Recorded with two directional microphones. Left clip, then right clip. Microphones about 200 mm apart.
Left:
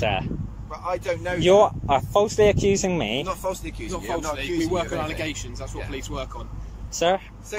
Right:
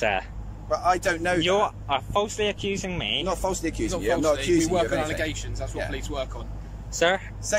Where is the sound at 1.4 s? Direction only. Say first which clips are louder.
Left 6 dB; 20° left (ahead or behind).